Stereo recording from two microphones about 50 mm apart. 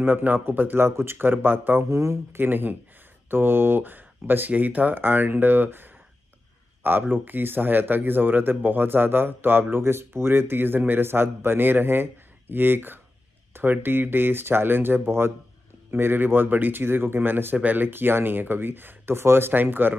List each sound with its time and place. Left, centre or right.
0.0 s speech: right
1.1 s speech: right
1.9 s speech: right
2.3 s speech: right
17.6 s speech: right
17.8 s speech: right